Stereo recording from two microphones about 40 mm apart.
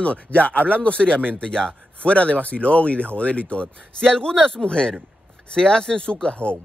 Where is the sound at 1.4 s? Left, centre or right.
Centre.